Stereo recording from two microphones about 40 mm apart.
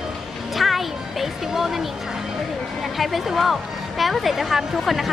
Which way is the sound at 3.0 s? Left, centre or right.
Centre.